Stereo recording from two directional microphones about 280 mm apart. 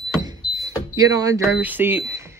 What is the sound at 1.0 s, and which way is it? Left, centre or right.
Speech, centre.